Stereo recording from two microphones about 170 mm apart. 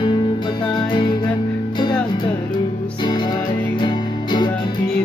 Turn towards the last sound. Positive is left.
turn(degrees=25)  # may be behind; listen again after turning